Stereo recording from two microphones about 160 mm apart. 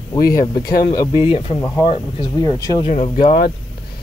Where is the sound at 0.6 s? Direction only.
70° left (ahead or behind).